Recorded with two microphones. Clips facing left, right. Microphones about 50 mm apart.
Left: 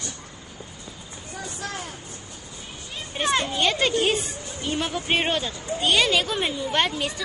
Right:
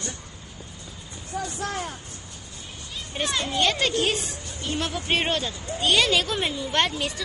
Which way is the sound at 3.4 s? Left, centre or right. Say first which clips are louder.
Left 1 dB; centre.